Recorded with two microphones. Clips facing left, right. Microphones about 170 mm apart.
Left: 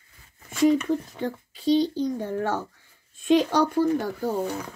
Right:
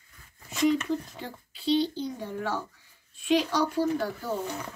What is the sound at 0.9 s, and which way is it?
Speech, 50° left (ahead or behind).